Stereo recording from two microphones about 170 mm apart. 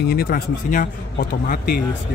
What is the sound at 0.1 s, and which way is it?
Speech, 60° left (ahead or behind).